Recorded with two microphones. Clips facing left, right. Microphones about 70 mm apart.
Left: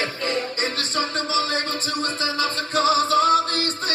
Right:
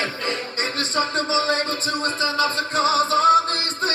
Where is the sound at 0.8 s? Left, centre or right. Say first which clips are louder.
Right 3 dB; right.